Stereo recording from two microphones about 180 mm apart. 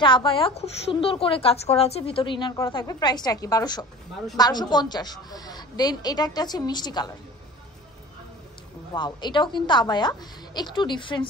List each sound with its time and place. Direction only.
0.0 s a woman's voice: 25° left (ahead or behind)
8.9 s a woman's voice: 25° left (ahead or behind)